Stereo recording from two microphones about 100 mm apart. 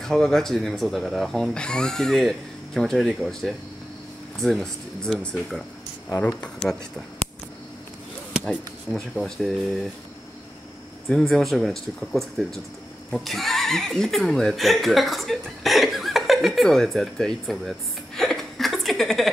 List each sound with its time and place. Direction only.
0.0 s speech: 5° left (ahead or behind)
6.0 s speech: 30° left (ahead or behind)
9.1 s speech: centre (ahead or behind)
11.1 s speech: 5° left (ahead or behind)